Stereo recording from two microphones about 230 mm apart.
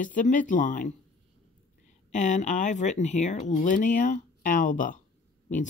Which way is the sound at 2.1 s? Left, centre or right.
Left.